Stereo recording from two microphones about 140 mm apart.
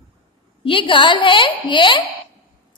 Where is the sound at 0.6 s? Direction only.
40° left (ahead or behind).